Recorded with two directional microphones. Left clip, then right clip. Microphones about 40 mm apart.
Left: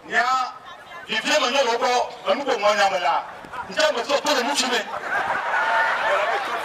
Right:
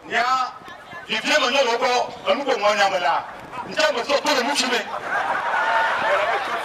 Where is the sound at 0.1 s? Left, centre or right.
Right.